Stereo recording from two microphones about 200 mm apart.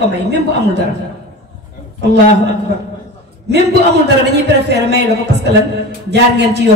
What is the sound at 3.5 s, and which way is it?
A man's voice, 55° right (ahead or behind).